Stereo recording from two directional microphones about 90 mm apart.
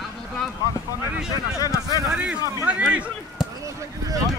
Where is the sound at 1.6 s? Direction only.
45° left (ahead or behind).